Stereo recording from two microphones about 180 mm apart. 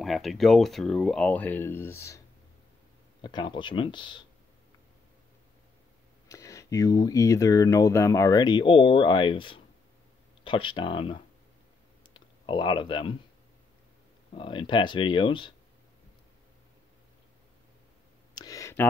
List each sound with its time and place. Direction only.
0.0 s speech: centre (ahead or behind); by 2.2 s 15° left (ahead or behind)
3.2 s speech: 25° left (ahead or behind)
6.2 s speech: 15° left (ahead or behind)
14.3 s speech: 30° left (ahead or behind)
18.3 s a sound: 20° left (ahead or behind)